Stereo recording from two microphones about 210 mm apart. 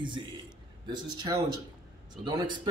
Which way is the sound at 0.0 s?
25° right (ahead or behind).